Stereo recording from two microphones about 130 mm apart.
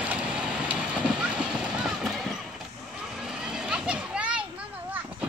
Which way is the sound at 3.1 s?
5° right (ahead or behind).